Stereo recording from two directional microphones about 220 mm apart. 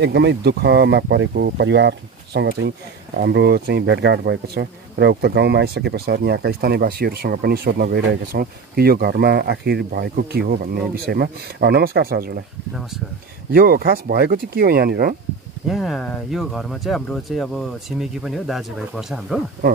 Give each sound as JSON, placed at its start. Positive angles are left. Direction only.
{"t": 0.0, "sound": "speech", "side_deg": -50}
{"t": 13.5, "sound": "speech", "side_deg": -40}
{"t": 15.7, "sound": "speech", "side_deg": 0}